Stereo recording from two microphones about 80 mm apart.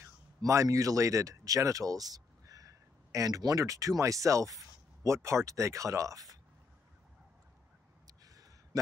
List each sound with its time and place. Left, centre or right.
0.4 s speech: right